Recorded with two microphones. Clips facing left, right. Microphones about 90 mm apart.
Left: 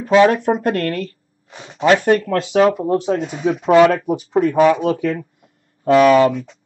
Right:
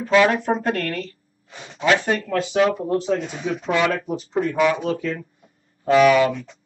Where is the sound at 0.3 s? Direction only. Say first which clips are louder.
Left 4 dB; 50° left (ahead or behind).